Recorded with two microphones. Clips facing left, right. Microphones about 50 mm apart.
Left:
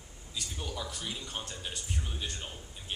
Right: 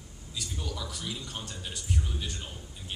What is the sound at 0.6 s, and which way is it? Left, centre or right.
Speech, left.